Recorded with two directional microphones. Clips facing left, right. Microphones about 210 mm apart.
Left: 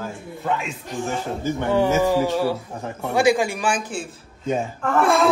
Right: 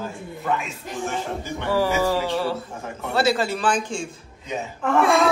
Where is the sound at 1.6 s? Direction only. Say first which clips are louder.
Left 2 dB; 20° left (ahead or behind); by 5.3 s centre (ahead or behind).